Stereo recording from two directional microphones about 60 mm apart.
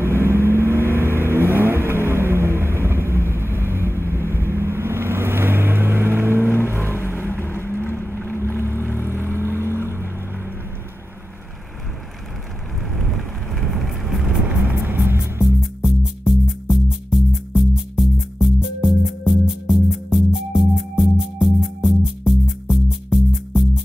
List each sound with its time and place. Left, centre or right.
0.0 s vehicle: right
6.9 s vehicle: left
7.8 s boat: left
8.7 s vehicle: left
9.8 s boat: right
13.5 s vehicle: centre
14.9 s music: right
15.4 s music: centre